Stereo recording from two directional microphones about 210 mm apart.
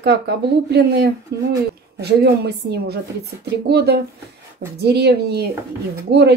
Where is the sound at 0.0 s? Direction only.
50° right (ahead or behind).